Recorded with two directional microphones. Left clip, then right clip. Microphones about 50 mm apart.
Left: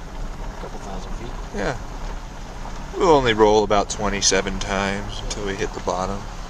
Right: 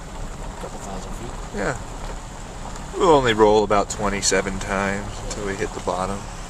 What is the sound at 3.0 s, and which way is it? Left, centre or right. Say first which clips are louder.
Speech: even; left.